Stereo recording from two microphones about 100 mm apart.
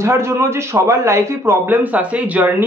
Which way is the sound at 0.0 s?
25° right (ahead or behind).